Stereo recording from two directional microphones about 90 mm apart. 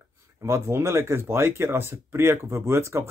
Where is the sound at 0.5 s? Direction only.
30° right (ahead or behind).